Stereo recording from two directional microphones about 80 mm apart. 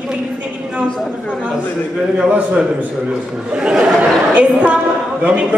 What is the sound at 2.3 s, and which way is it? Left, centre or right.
A man's voice, centre.